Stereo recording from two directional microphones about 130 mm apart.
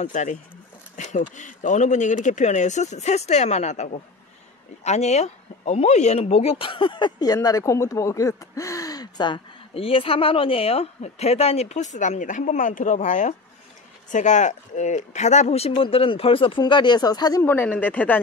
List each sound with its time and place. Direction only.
0.1 s speech: 65° left (ahead or behind); by 17.4 s 30° left (ahead or behind)
17.4 s speech: 15° left (ahead or behind)